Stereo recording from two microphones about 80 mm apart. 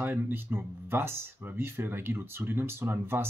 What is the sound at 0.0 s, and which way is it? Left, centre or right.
Speech, right.